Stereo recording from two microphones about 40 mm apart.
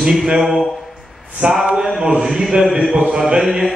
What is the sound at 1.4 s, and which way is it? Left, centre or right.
Mantra, right.